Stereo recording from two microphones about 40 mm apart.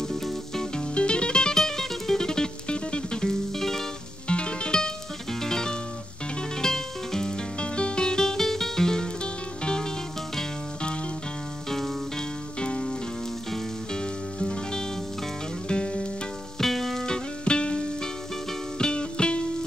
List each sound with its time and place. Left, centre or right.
0.2 s music: centre
0.9 s music: left
4.3 s music: left
7.6 s music: left
12.2 s music: left
13.9 s music: centre
16.5 s music: centre
17.0 s music: left